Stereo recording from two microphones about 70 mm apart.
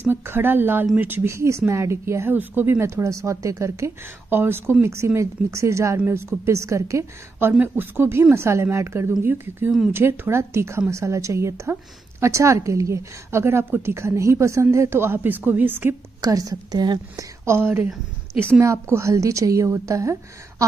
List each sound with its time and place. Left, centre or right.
0.0 s a woman's voice: right
1.2 s a woman's voice: right
2.3 s speech: right
2.8 s a woman's voice: right
4.3 s a woman's voice: right
7.5 s a woman's voice: right
16.2 s a woman's voice: right
17.6 s a woman's voice: right
18.6 s a woman's voice: right